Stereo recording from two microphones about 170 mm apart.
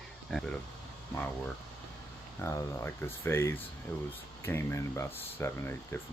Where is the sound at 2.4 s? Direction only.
15° left (ahead or behind).